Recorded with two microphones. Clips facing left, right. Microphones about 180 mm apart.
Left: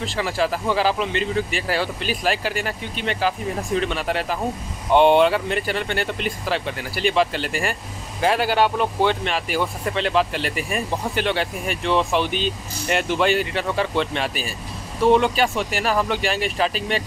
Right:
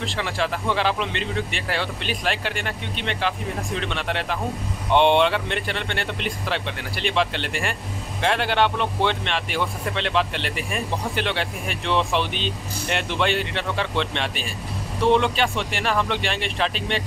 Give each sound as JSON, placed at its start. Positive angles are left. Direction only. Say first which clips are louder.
{"t": 0.0, "sound": "a man's voice", "louder": "left 3 dB", "side_deg": 5}